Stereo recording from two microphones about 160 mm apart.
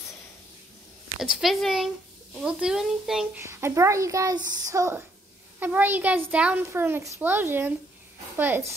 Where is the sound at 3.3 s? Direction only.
15° right (ahead or behind).